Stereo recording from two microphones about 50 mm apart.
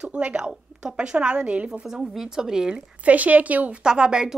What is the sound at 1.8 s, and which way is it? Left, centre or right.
Speech, centre.